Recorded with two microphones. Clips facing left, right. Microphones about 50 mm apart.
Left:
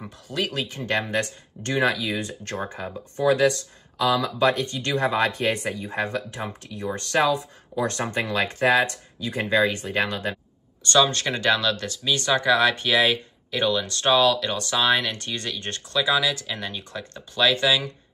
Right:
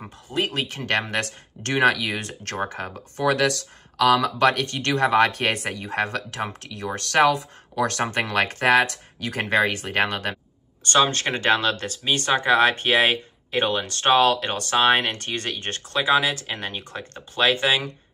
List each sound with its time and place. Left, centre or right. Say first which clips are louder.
0.4 s speech: right 2 dB; right
0.7 s speech: right 1 dB; right
3.2 s speech: left 1 dB; right
9.9 s speech: right 5 dB; right
10.8 s speech: even; right